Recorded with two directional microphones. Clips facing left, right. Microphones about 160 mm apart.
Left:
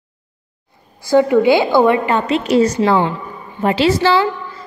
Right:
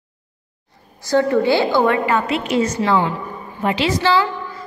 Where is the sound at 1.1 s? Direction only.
15° left (ahead or behind).